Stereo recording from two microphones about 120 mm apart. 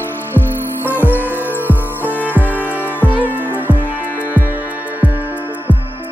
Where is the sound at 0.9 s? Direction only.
15° left (ahead or behind).